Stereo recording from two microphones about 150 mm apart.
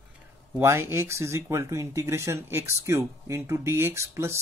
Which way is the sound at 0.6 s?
15° right (ahead or behind).